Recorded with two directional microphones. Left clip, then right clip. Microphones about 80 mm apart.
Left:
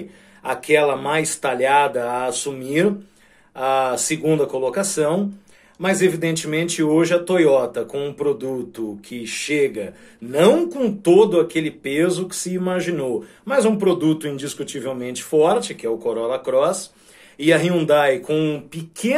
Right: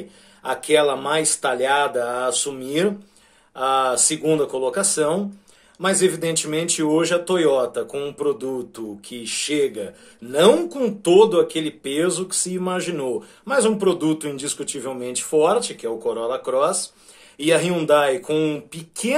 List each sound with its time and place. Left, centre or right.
0.4 s speech: centre
1.5 s speech: centre
3.5 s speech: centre
10.7 s speech: right